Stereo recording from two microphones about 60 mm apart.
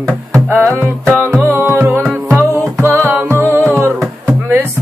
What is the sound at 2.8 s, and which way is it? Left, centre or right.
Music, right.